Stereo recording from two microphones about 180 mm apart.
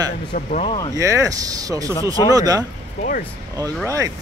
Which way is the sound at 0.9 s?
20° right (ahead or behind).